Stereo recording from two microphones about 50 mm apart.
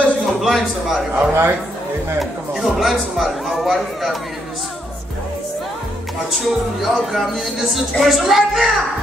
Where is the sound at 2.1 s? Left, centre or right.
Centre.